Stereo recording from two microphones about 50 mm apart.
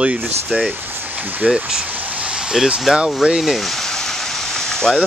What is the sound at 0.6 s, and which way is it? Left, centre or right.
Speech, right.